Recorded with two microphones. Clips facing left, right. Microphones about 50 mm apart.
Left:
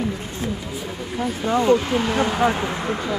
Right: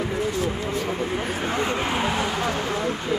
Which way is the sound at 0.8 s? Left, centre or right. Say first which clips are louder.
Right 1 dB; right.